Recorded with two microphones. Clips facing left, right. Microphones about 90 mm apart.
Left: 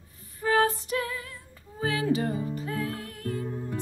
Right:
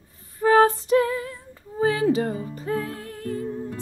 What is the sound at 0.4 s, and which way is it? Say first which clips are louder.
Female singing: right 7 dB; 35° right (ahead or behind).